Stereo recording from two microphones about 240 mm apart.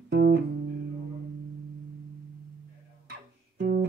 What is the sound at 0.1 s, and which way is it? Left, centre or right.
Music, right.